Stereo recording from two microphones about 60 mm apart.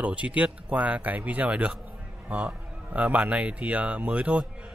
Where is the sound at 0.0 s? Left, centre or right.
Right.